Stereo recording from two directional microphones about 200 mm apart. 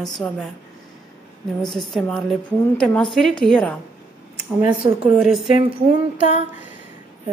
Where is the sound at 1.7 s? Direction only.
Centre (ahead or behind).